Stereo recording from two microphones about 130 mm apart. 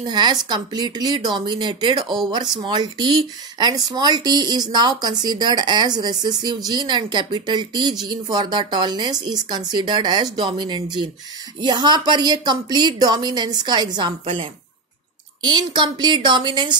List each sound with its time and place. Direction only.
0.0 s speech: 35° right (ahead or behind)